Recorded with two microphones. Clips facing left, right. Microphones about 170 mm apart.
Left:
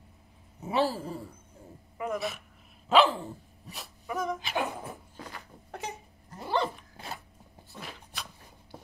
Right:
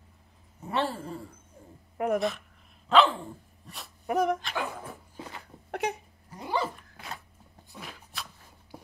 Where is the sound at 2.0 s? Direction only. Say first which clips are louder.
Right 6 dB; 65° right (ahead or behind).